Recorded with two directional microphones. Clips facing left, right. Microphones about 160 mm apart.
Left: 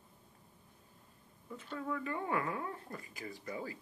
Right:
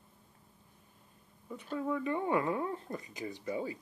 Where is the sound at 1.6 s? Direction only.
15° right (ahead or behind).